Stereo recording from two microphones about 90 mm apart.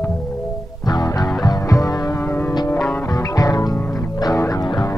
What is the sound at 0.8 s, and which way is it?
Music, 50° left (ahead or behind).